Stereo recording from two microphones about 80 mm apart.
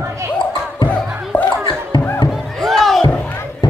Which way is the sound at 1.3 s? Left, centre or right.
Left.